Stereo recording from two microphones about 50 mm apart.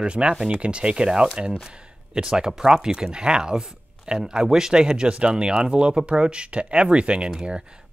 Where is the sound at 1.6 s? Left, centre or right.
Centre.